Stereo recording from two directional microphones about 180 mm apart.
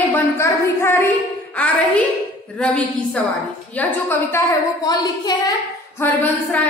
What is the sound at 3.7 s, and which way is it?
A woman's voice, 10° left (ahead or behind).